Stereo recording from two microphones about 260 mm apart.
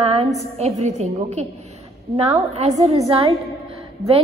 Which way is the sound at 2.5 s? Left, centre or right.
Right.